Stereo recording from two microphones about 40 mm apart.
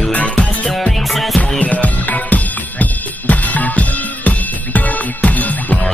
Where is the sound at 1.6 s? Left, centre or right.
Left.